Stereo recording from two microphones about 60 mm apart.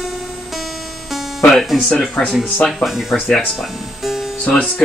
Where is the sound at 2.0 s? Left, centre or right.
Centre.